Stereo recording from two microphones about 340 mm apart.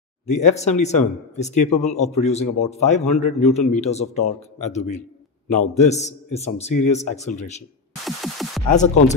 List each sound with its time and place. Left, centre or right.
0.3 s speech: left
8.0 s music: centre
8.7 s speech: left